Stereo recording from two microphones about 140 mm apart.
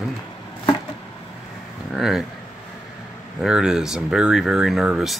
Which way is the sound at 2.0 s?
Centre (ahead or behind).